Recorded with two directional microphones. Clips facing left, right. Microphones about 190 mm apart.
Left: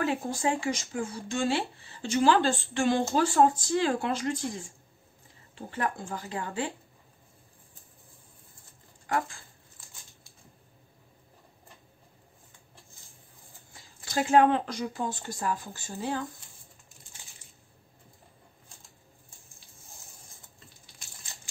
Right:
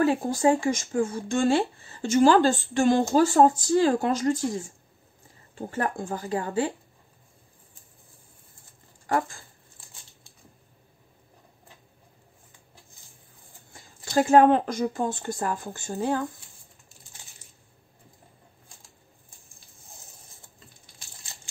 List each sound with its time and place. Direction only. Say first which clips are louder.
0.0 s speech: right 7 dB; 40° right (ahead or behind)
14.1 s speech: right 5 dB; 40° right (ahead or behind)